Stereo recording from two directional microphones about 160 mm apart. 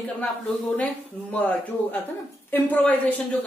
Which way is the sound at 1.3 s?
10° left (ahead or behind).